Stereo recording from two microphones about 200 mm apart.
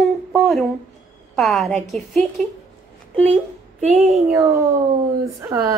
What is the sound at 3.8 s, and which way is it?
Speech, 35° right (ahead or behind).